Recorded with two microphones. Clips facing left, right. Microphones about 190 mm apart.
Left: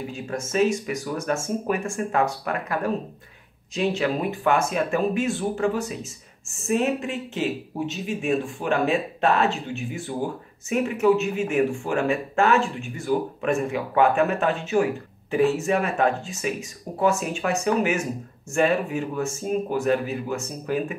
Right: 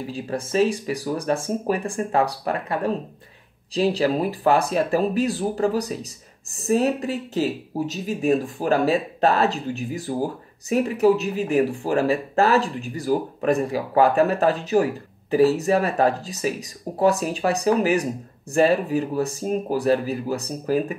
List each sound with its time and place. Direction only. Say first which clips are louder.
0.0 s speech: right 2 dB; 35° right (ahead or behind)